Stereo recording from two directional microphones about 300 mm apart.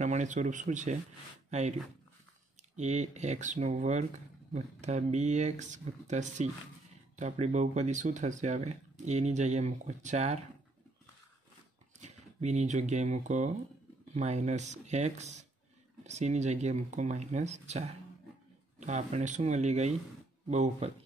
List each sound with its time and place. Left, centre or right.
0.0 s speech: right
12.0 s speech: right